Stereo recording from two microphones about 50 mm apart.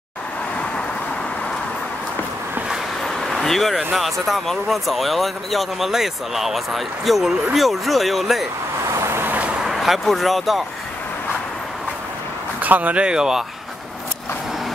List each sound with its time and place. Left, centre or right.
3.1 s speech: centre
8.8 s vehicle: right
9.2 s vehicle: right
9.8 s speech: centre
12.5 s speech: right
13.0 s speech: centre